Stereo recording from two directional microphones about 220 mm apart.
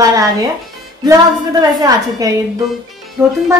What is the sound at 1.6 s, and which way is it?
Speech, 15° right (ahead or behind).